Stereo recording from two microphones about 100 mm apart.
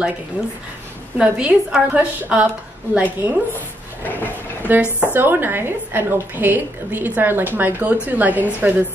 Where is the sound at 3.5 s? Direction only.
20° left (ahead or behind).